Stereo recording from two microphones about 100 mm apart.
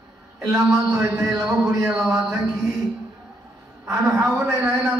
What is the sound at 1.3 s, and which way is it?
Speech, 35° right (ahead or behind).